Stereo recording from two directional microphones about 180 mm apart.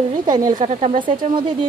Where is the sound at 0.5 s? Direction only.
40° right (ahead or behind).